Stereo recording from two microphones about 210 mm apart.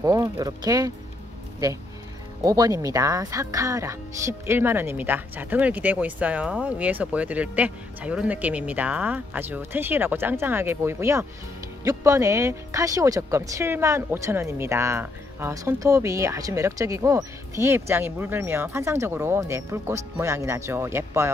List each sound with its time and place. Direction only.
0.0 s speech: 15° right (ahead or behind)
2.4 s speech: 15° right (ahead or behind)